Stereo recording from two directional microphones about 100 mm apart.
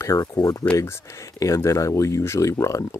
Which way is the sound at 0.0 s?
30° left (ahead or behind).